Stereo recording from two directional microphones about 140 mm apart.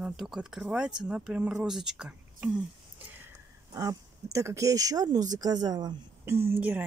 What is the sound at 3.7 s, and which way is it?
Speech, 25° right (ahead or behind).